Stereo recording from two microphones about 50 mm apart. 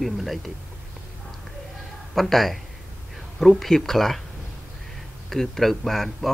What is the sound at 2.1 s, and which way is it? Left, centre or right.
Speech, centre.